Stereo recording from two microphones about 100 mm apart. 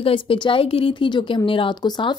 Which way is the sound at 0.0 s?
65° left (ahead or behind).